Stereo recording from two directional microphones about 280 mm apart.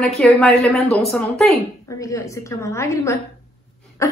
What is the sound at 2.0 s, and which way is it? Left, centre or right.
A woman's voice, centre.